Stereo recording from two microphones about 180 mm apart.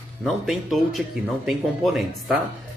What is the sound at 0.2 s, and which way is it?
Speech, centre (ahead or behind).